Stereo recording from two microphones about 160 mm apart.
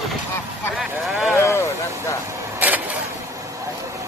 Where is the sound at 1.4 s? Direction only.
20° left (ahead or behind).